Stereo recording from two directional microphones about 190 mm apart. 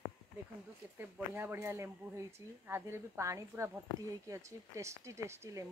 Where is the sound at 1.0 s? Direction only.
10° right (ahead or behind).